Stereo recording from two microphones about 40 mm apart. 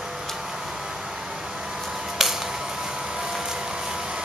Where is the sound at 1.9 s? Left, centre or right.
Centre.